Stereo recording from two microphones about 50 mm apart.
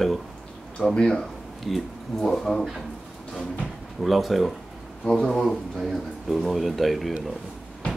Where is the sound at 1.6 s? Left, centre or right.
Centre.